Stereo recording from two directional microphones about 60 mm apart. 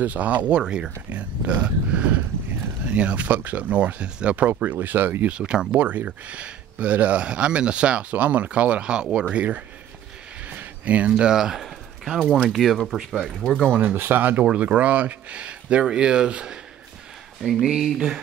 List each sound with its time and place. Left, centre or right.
0.0 s speech: right
5.3 s speech: centre
10.5 s a sound: right
11.1 s speech: centre
13.7 s speech: right
14.5 s speech: right
17.4 s speech: centre